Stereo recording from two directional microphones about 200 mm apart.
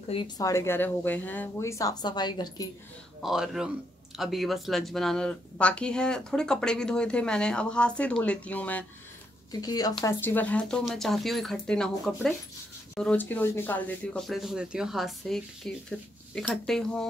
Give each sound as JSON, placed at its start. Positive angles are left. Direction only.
{"t": 0.1, "sound": "speech", "side_deg": 20}
{"t": 3.2, "sound": "speech", "side_deg": 0}
{"t": 9.5, "sound": "speech", "side_deg": 20}